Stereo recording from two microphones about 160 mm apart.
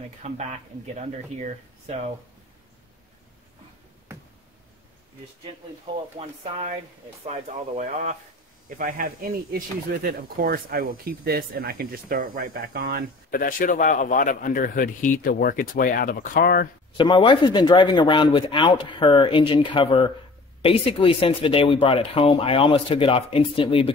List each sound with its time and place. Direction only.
0.2 s speech: 45° right (ahead or behind)
6.1 s speech: 50° right (ahead or behind)
8.6 s speech: 55° right (ahead or behind)
9.5 s speech: 65° right (ahead or behind)
13.3 s a man's voice: 60° left (ahead or behind)
16.9 s speech: 30° left (ahead or behind)